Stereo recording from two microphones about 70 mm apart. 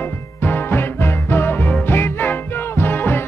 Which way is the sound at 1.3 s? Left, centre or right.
Left.